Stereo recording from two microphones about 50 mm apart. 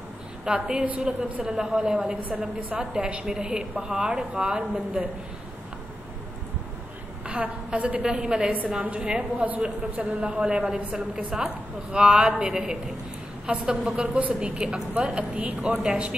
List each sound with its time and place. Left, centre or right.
0.5 s a woman's voice: centre
2.8 s a woman's voice: centre
3.7 s a woman's voice: right
7.2 s a woman's voice: right
8.0 s a woman's voice: centre